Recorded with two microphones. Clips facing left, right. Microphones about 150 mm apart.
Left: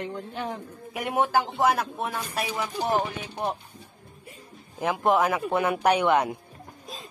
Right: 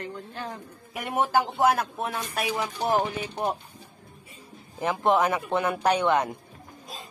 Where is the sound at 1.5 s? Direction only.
Centre (ahead or behind).